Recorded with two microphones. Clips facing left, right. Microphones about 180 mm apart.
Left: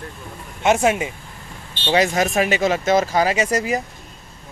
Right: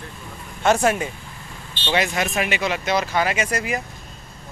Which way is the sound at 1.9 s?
40° left (ahead or behind).